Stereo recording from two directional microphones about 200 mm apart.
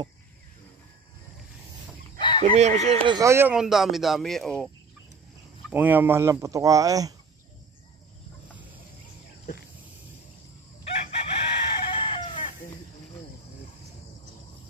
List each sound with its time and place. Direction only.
2.1 s chicken: 25° left (ahead or behind)
2.4 s speech: 35° right (ahead or behind)
3.2 s speech: 15° right (ahead or behind); by 4.6 s 5° left (ahead or behind)
5.7 s speech: 10° right (ahead or behind)
10.8 s chicken: 30° left (ahead or behind)